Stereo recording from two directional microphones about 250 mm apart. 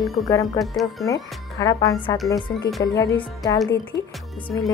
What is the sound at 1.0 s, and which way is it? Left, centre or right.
A woman's voice, centre.